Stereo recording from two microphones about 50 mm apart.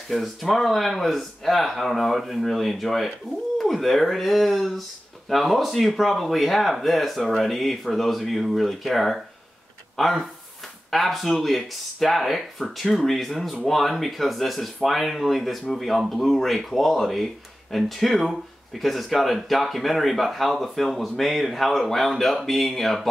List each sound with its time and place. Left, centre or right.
0.1 s speech: centre